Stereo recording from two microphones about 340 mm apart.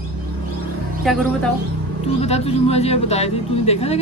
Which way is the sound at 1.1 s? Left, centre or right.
Centre.